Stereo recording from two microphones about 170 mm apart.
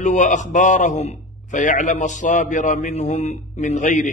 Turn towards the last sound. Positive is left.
turn(degrees=45)  # may be behind; listen again after turning